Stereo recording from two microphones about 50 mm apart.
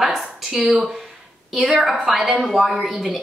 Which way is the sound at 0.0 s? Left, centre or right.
Centre.